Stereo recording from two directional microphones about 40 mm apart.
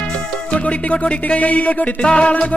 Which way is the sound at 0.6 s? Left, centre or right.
Left.